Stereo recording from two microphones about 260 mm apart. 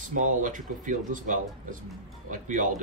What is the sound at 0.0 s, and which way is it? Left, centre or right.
Speech, right.